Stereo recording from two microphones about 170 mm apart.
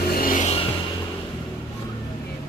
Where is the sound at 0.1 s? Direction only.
55° left (ahead or behind).